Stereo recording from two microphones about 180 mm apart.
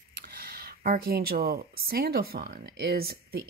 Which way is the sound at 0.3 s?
55° right (ahead or behind).